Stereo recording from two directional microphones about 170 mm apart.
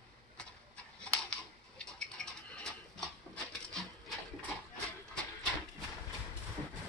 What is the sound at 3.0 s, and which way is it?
Wood, centre (ahead or behind).